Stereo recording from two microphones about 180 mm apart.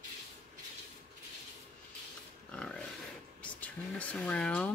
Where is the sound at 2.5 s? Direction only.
5° left (ahead or behind).